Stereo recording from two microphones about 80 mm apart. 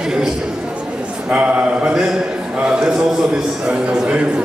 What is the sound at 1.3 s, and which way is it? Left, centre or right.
A man's voice, centre.